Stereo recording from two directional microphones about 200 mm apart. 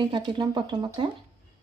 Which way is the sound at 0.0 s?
20° right (ahead or behind).